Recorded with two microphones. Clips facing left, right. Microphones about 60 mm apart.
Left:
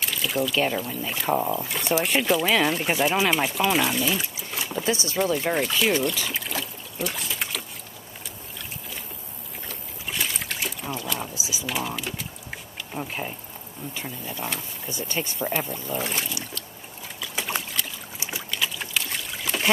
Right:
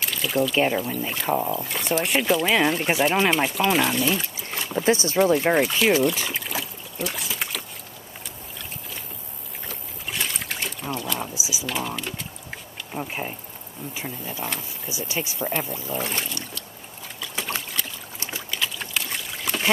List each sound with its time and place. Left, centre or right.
0.0 s a sound: centre
1.0 s speech: centre
4.8 s speech: right
5.2 s speech: centre
6.3 s trickle: centre
9.7 s trickle: centre
11.3 s speech: centre
11.6 s speech: centre
12.9 s speech: centre
17.2 s boat: centre